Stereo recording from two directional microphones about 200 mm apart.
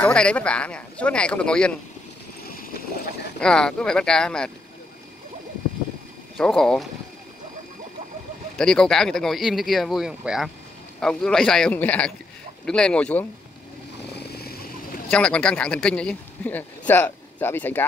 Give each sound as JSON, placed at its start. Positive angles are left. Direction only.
{"t": 0.0, "sound": "speech", "side_deg": 5}
{"t": 3.3, "sound": "speech", "side_deg": 5}
{"t": 6.3, "sound": "speech", "side_deg": 0}
{"t": 8.5, "sound": "speech", "side_deg": 5}
{"t": 14.1, "sound": "vehicle", "side_deg": 50}
{"t": 15.0, "sound": "a man's voice", "side_deg": 5}